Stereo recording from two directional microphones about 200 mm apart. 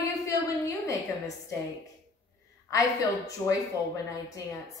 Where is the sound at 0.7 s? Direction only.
15° left (ahead or behind).